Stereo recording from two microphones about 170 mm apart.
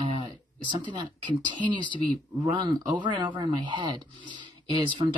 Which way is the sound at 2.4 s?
25° right (ahead or behind).